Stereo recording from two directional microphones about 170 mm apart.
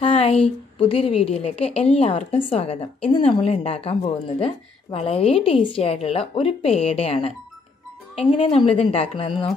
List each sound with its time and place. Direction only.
0.0 s a woman's voice: 35° left (ahead or behind)